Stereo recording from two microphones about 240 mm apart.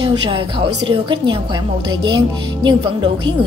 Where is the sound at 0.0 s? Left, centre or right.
Right.